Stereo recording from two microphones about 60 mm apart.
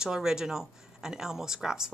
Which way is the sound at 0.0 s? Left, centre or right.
Centre.